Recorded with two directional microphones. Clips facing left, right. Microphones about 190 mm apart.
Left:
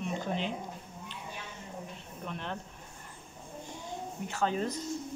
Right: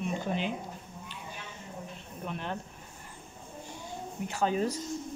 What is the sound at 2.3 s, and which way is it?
Speech, 5° right (ahead or behind).